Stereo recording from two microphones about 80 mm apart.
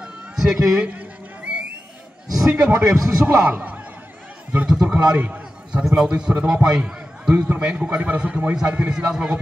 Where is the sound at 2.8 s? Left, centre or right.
Right.